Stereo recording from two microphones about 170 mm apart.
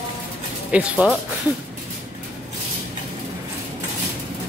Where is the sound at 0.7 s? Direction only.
5° right (ahead or behind).